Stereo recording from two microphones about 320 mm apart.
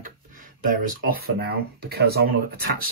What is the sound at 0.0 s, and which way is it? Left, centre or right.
Speech, right.